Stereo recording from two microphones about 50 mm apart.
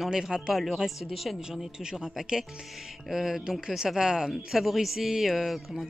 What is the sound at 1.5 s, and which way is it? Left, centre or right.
Speech, centre.